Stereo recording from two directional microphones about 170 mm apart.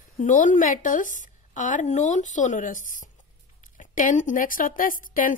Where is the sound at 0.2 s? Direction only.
50° left (ahead or behind).